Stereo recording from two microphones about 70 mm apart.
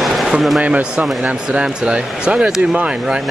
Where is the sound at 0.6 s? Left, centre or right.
Centre.